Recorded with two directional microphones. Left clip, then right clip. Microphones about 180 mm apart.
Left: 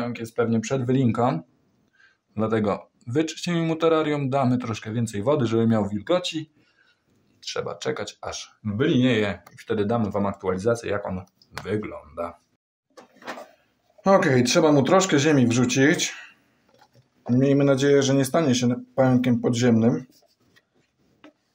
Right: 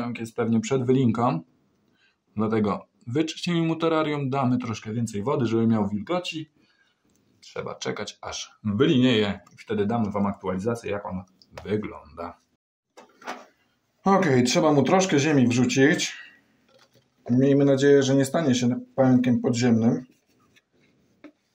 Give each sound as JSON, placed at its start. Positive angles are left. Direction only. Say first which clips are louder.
{"t": 0.0, "sound": "speech", "louder": "left 3 dB", "side_deg": 5}
{"t": 2.3, "sound": "speech", "louder": "left 2 dB", "side_deg": 10}
{"t": 7.3, "sound": "speech", "louder": "left 4 dB", "side_deg": 15}
{"t": 8.6, "sound": "speech", "louder": "right 1 dB", "side_deg": 0}
{"t": 11.6, "sound": "speech", "louder": "even", "side_deg": 10}
{"t": 14.0, "sound": "speech", "louder": "left 2 dB", "side_deg": 15}
{"t": 17.2, "sound": "speech", "louder": "even", "side_deg": 10}